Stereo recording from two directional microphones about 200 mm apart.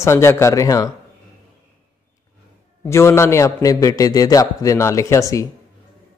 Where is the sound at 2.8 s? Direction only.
15° left (ahead or behind).